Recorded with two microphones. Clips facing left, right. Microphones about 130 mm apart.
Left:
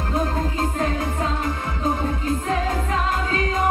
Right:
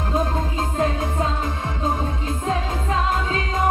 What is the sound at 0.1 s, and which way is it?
Music, 20° right (ahead or behind).